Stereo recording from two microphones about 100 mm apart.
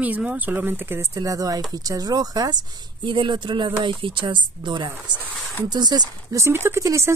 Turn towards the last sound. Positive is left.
turn(degrees=-30)  # may be behind; listen again after turning